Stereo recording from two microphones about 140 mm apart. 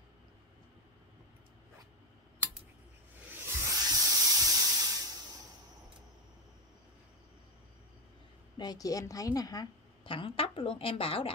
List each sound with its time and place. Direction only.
3.3 s spray: 20° right (ahead or behind)
8.5 s a woman's voice: 25° left (ahead or behind)
10.0 s a woman's voice: 40° left (ahead or behind)